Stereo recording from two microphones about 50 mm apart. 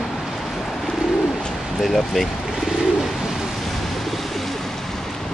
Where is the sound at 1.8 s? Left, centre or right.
Centre.